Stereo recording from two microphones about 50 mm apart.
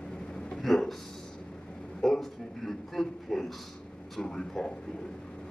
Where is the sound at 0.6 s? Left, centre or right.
Centre.